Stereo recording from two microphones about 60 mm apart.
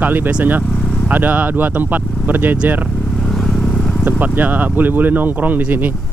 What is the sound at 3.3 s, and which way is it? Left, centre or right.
Vehicle, centre.